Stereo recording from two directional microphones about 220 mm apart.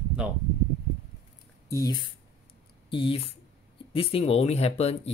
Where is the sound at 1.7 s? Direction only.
15° left (ahead or behind).